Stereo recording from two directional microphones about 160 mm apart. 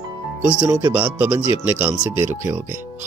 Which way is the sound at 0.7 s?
20° right (ahead or behind).